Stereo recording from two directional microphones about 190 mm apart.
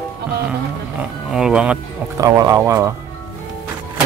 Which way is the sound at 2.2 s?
20° right (ahead or behind).